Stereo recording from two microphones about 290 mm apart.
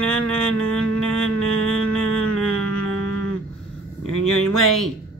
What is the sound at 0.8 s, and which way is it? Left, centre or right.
Music, centre.